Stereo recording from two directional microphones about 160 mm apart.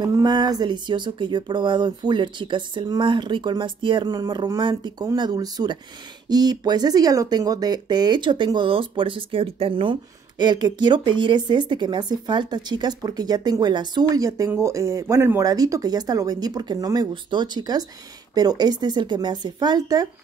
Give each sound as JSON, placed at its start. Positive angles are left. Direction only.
{"t": 0.0, "sound": "speech", "side_deg": -25}